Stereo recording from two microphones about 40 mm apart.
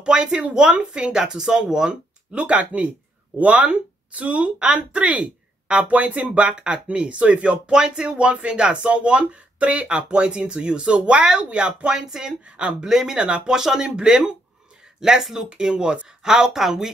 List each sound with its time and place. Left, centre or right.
0.0 s speech: right
2.3 s speech: right
6.5 s speech: right
7.7 s speech: centre